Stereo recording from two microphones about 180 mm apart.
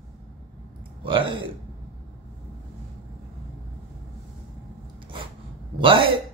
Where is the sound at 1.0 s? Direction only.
30° right (ahead or behind).